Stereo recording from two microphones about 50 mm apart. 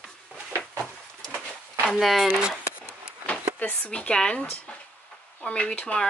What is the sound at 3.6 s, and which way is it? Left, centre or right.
Speech, left.